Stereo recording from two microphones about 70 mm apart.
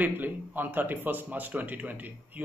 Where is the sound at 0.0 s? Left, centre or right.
Right.